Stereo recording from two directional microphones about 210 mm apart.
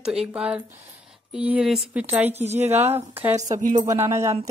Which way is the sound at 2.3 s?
30° right (ahead or behind).